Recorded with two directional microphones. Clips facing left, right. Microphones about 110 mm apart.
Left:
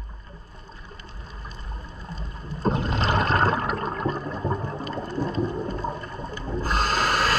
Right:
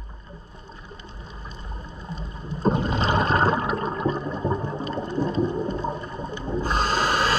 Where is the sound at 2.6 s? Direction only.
5° right (ahead or behind).